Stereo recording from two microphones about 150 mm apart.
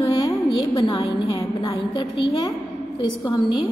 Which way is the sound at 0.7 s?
35° left (ahead or behind).